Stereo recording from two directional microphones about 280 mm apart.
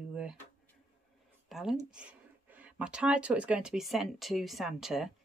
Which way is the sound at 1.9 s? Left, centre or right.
Centre.